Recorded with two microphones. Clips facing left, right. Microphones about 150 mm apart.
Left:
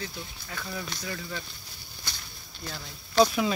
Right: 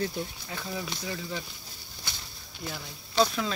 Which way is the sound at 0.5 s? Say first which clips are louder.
Right 1 dB; 20° right (ahead or behind).